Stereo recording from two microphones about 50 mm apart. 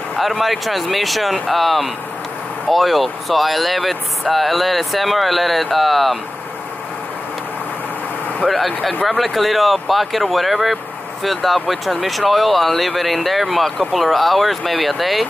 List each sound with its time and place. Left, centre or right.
0.2 s speech: centre
8.5 s speech: centre